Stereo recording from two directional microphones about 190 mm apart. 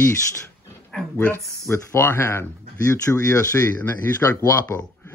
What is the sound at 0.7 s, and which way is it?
Dog, 5° left (ahead or behind).